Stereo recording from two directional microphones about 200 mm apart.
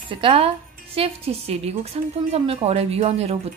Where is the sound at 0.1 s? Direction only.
25° right (ahead or behind).